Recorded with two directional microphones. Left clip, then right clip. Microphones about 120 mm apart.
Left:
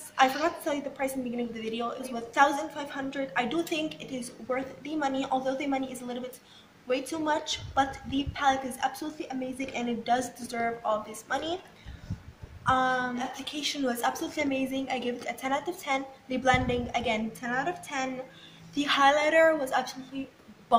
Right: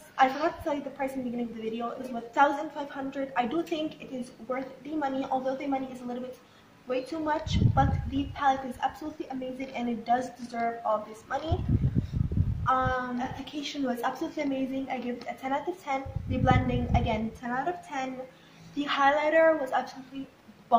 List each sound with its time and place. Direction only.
0.2 s a woman's voice: 10° left (ahead or behind)
12.6 s a woman's voice: 15° left (ahead or behind)